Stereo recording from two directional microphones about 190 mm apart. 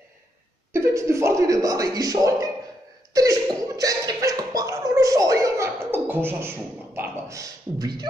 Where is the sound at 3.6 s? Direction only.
20° right (ahead or behind).